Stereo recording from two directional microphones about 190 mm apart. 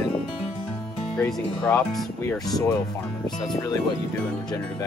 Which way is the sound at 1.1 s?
10° left (ahead or behind).